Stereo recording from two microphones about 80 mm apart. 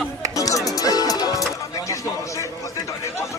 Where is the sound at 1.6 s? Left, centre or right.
Left.